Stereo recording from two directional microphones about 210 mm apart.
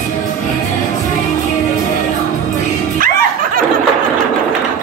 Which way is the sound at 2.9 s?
40° right (ahead or behind).